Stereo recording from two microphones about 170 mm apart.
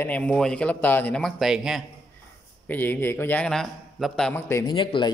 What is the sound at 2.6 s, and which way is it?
A man's voice, 10° left (ahead or behind).